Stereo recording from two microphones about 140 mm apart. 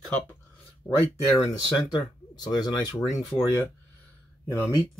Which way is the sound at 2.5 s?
30° left (ahead or behind).